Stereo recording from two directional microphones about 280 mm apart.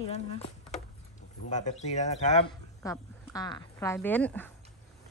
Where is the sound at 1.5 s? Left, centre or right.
Left.